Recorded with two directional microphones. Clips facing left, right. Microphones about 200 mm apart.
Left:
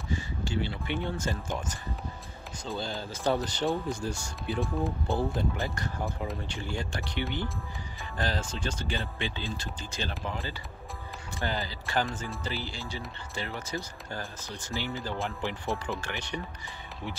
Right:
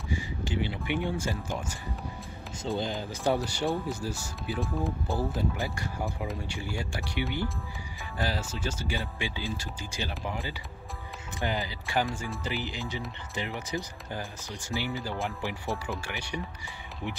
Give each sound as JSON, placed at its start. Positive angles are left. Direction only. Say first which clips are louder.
{"t": 0.1, "sound": "speech", "louder": "even", "side_deg": -15}
{"t": 2.8, "sound": "speech", "louder": "left 2 dB", "side_deg": -15}
{"t": 15.7, "sound": "speech", "louder": "left 1 dB", "side_deg": -5}